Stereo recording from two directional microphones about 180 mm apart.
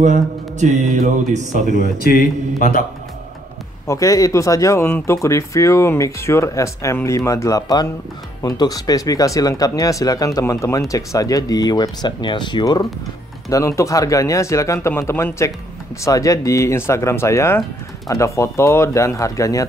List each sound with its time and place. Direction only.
0.0 s speech: 45° right (ahead or behind)
1.8 s speech: 55° left (ahead or behind)
3.8 s speech: 15° left (ahead or behind)